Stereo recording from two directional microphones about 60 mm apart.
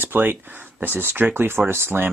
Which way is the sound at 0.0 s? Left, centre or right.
Right.